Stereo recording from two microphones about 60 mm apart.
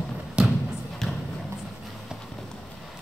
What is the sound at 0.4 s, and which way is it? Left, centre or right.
Thump, centre.